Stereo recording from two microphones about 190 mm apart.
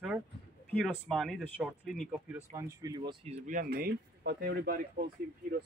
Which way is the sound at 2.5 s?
15° right (ahead or behind).